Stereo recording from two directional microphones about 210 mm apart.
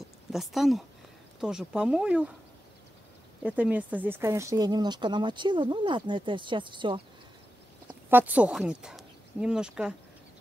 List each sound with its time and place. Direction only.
0.0 s speech: centre (ahead or behind)
3.4 s speech: 5° right (ahead or behind); by 7.0 s 25° right (ahead or behind)
8.1 s speech: 10° right (ahead or behind)